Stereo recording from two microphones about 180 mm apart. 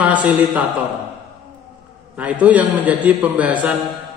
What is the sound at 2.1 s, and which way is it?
A man's voice, 10° right (ahead or behind).